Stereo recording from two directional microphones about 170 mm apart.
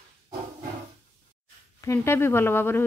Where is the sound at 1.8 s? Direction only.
15° left (ahead or behind).